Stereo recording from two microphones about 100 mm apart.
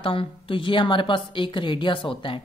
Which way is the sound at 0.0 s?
60° left (ahead or behind).